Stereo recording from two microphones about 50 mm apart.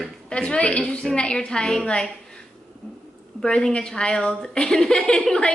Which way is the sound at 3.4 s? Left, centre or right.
Centre.